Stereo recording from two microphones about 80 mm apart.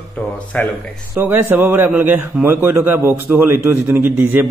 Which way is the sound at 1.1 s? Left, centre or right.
Right.